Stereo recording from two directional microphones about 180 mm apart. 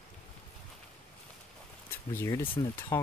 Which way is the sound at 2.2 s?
15° left (ahead or behind).